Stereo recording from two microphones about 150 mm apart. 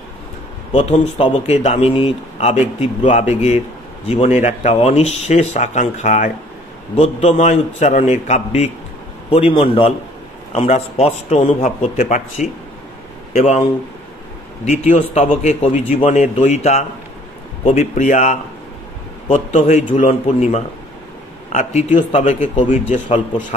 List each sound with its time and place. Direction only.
0.7 s a man's voice: 45° left (ahead or behind)